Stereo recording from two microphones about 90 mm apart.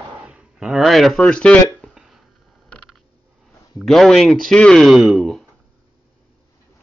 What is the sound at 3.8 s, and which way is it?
Speech, 5° left (ahead or behind).